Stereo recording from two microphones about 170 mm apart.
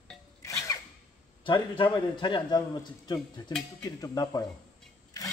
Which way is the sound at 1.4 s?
30° left (ahead or behind).